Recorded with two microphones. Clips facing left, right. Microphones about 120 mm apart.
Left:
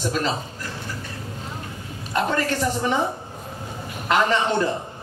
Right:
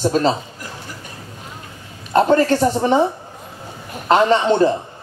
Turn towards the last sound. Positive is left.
turn(degrees=-30)  # may be behind; listen again after turning